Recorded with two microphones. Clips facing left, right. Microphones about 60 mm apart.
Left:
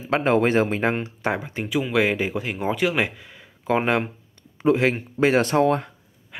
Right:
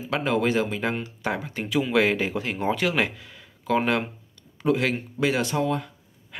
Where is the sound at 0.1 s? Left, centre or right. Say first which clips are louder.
Left 4 dB; left.